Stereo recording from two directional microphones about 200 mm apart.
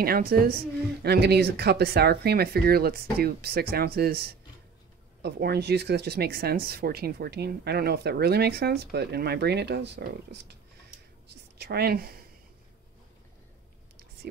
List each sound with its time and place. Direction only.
0.0 s a woman's voice: 50° right (ahead or behind)
14.2 s speech: 55° right (ahead or behind)